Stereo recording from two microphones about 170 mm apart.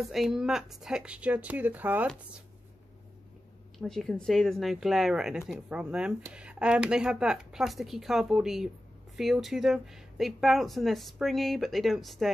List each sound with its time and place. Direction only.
0.1 s speech: centre (ahead or behind)
3.7 s speech: centre (ahead or behind)